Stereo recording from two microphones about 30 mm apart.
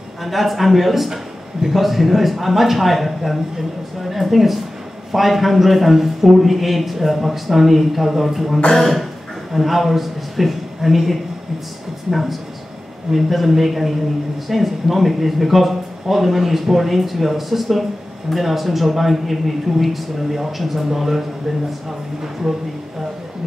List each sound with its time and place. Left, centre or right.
0.2 s a man's voice: centre